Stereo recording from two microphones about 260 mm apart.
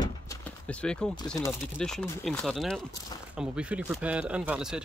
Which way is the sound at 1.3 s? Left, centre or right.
Centre.